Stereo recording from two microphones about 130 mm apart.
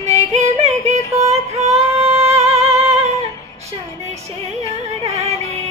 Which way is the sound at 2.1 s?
25° right (ahead or behind).